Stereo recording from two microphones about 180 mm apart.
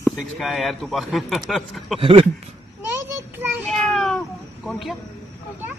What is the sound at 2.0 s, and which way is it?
Speech, 30° right (ahead or behind).